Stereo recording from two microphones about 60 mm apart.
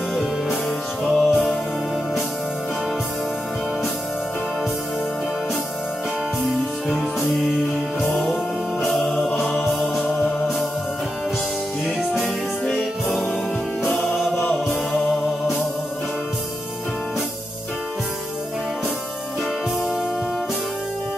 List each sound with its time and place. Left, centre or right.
0.1 s music: centre
6.4 s music: centre
13.9 s music: centre